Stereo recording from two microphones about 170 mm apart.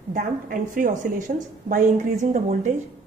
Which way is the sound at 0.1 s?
50° right (ahead or behind).